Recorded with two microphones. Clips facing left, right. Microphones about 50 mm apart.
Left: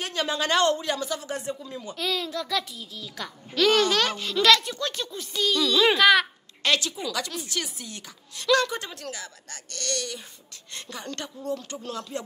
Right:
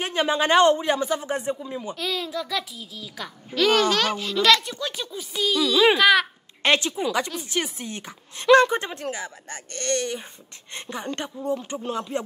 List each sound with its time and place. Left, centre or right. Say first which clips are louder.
0.0 s speech: right 5 dB; right
2.0 s a child's voice: left 2 dB; centre
6.6 s speech: right 4 dB; right